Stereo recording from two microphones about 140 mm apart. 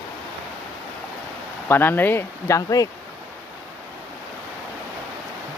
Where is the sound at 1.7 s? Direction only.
15° left (ahead or behind).